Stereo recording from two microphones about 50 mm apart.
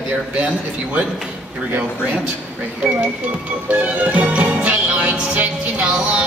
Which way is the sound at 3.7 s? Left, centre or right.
Right.